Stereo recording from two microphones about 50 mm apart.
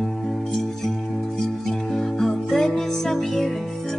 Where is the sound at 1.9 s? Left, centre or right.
Centre.